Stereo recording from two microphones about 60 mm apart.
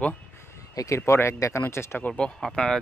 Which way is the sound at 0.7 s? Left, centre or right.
Left.